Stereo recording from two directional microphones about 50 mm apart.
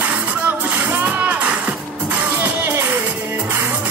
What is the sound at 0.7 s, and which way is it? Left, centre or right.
Music, right.